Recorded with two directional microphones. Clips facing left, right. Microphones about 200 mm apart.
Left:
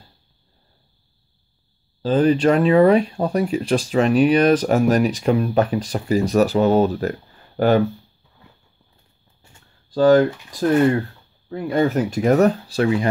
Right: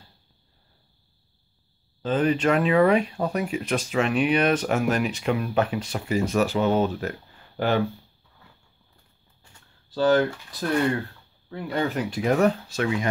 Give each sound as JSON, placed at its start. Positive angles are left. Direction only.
{"t": 2.0, "sound": "speech", "side_deg": 35}
{"t": 9.9, "sound": "speech", "side_deg": 45}
{"t": 11.5, "sound": "speech", "side_deg": 45}